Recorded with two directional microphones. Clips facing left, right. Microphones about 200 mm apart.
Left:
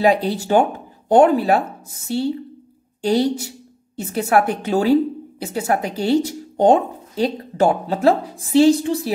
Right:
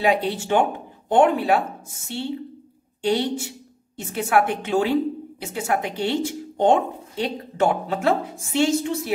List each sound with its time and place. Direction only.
0.0 s a woman's voice: 40° left (ahead or behind)